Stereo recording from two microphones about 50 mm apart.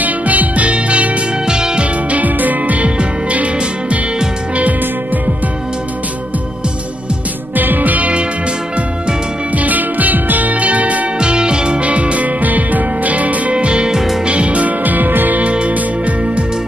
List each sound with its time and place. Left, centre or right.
0.0 s music: right; by 1.9 s centre
2.0 s music: right
7.5 s music: right
9.6 s music: right
11.1 s music: centre
13.9 s music: centre
14.2 s music: right
15.5 s music: right